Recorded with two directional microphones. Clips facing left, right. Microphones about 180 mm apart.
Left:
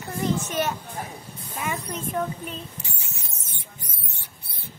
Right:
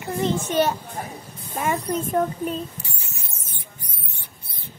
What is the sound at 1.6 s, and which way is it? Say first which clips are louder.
Speech: right 6 dB; 45° right (ahead or behind).